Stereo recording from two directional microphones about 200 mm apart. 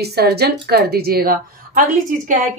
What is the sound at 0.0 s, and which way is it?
Speech, 50° right (ahead or behind).